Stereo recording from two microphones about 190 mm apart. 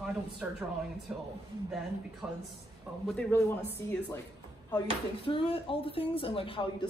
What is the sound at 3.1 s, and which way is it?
A man's voice, 10° left (ahead or behind).